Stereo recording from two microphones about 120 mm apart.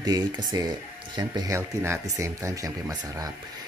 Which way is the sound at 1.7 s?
25° right (ahead or behind).